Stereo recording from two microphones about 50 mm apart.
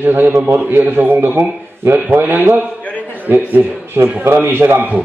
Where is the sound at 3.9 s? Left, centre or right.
Right.